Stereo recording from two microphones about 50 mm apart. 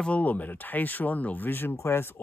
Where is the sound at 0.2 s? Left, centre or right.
Left.